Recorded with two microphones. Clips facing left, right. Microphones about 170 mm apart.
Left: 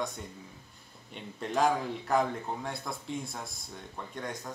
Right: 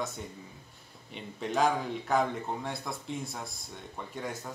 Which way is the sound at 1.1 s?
Centre (ahead or behind).